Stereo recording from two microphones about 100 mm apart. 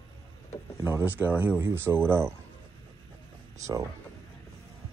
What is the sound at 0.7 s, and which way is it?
Speech, 25° right (ahead or behind).